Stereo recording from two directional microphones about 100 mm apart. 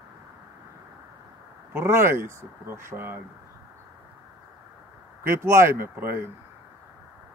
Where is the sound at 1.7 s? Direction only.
20° right (ahead or behind).